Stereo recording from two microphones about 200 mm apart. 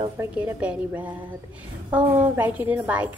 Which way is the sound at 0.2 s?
10° right (ahead or behind).